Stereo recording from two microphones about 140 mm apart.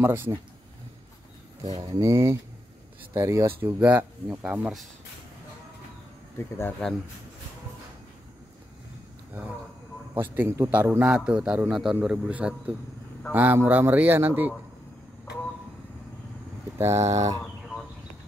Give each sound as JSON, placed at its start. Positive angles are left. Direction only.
{"t": 0.0, "sound": "a man's voice", "side_deg": -15}
{"t": 1.8, "sound": "a man's voice", "side_deg": -25}
{"t": 6.8, "sound": "speech", "side_deg": 5}
{"t": 10.1, "sound": "a man's voice", "side_deg": -10}
{"t": 16.7, "sound": "speech", "side_deg": -20}